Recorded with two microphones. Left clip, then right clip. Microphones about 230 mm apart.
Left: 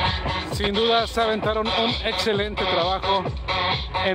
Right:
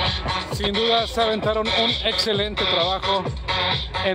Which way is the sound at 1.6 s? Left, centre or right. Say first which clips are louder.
Right 2 dB; right.